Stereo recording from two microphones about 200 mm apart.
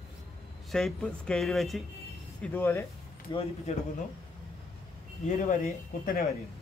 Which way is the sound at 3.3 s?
30° left (ahead or behind).